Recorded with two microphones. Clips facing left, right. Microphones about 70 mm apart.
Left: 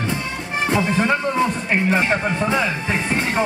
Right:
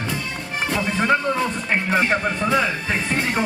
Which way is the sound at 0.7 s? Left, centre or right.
Left.